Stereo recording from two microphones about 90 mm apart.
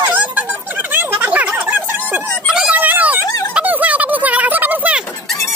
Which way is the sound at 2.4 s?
10° right (ahead or behind).